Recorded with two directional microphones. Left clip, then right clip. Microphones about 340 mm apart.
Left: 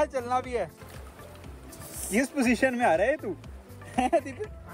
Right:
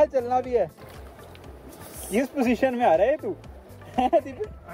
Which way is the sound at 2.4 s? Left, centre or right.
Left.